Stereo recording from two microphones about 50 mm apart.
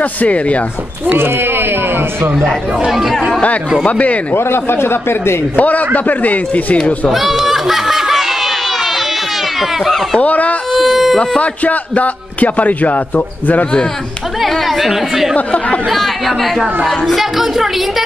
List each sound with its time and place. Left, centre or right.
0.0 s speech: left
1.1 s speech: right
2.8 s speech: centre
3.8 s a man's voice: left
4.3 s a man's voice: left
5.6 s speech: left
7.1 s snicker: centre
10.2 s speech: left
10.8 s speech: centre
11.1 s a man's voice: left
14.4 s speech: centre
15.3 s a man's voice: left
15.9 s speech: centre